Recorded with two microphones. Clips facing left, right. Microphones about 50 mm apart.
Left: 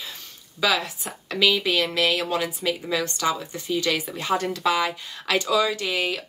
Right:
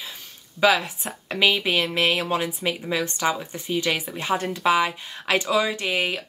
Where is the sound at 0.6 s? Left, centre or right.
Right.